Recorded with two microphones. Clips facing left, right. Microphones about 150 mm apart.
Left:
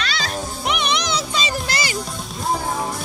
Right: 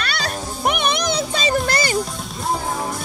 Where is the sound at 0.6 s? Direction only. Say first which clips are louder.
Right 4 dB; 50° right (ahead or behind).